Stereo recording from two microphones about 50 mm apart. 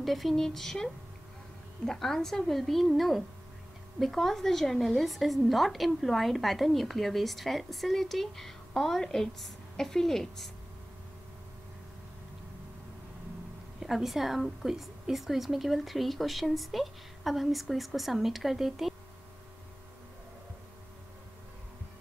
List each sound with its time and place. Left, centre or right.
0.0 s speech: centre
1.9 s a woman's voice: centre
13.7 s a woman's voice: centre